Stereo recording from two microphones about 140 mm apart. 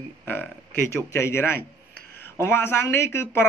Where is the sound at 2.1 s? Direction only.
15° left (ahead or behind).